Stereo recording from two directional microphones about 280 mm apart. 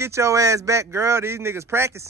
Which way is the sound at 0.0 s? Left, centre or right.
Centre.